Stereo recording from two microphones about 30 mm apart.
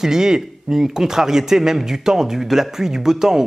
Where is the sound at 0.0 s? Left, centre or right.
Centre.